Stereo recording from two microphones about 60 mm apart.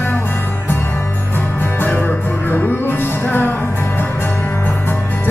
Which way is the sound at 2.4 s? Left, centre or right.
Left.